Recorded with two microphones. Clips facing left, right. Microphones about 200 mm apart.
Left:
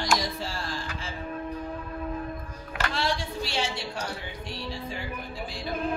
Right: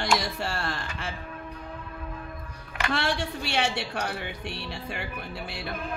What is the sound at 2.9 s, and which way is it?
A woman's voice, 65° right (ahead or behind).